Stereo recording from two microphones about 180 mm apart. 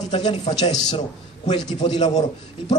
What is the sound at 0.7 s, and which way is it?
Speech, 20° left (ahead or behind).